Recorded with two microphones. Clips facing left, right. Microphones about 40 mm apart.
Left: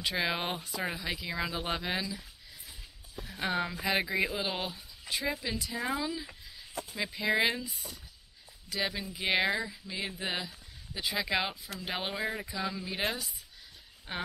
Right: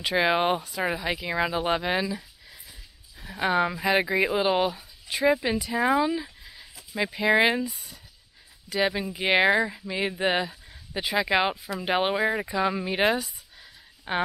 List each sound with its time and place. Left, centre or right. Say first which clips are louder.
0.2 s speech: right 13 dB; right
3.3 s speech: right 8 dB; right
4.7 s a sound: right 3 dB; centre
5.2 s speech: right 13 dB; right
6.4 s a sound: right 4 dB; centre
7.0 s speech: right 8 dB; centre
7.6 s speech: right 8 dB; centre
8.6 s speech: right 8 dB; centre
9.5 s speech: right 10 dB; right
11.1 s speech: right 9 dB; right